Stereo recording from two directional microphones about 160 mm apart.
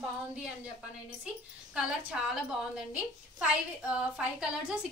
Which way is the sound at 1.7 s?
5° right (ahead or behind).